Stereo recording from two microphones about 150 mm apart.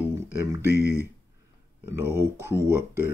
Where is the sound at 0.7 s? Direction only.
90° right.